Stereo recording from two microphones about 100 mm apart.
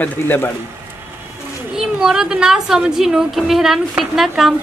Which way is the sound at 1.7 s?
5° right (ahead or behind).